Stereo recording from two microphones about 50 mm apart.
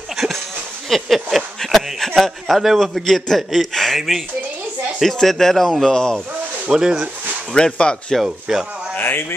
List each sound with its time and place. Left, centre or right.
0.8 s speech: centre
6.7 s speech: centre
7.7 s speech: left
8.2 s speech: centre
8.9 s a sound: left